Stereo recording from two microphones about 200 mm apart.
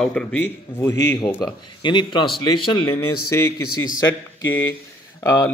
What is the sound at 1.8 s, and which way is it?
A man's voice, 25° left (ahead or behind).